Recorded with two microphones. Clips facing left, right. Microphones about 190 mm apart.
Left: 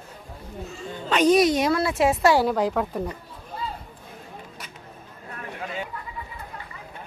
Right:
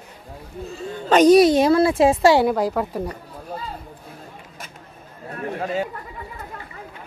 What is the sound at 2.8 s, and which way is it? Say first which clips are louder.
Speech: right 2 dB; 5° right (ahead or behind).